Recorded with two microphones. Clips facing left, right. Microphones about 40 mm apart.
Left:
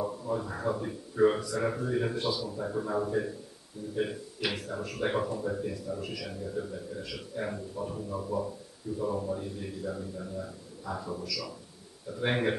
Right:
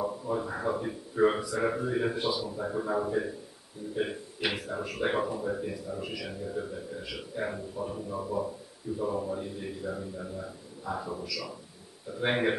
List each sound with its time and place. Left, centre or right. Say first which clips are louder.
0.0 s speech: right 1 dB; centre